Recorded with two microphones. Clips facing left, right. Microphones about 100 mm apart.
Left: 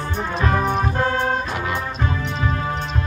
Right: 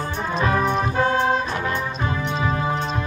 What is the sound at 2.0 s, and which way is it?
Music, 15° right (ahead or behind).